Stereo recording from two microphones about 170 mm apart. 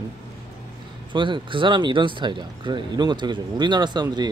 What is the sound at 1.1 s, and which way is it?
Speech, 30° right (ahead or behind).